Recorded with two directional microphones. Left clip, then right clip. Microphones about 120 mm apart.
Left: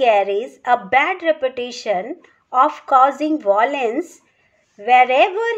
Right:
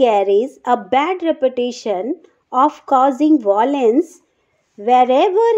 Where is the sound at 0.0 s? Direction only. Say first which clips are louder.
Right 2 dB; 25° right (ahead or behind).